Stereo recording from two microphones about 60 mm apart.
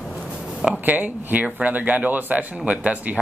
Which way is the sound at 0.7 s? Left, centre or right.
Right.